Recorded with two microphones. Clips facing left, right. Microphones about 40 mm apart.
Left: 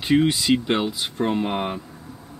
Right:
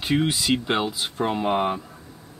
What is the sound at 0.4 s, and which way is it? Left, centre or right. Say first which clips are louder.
Speech: left 2 dB; centre.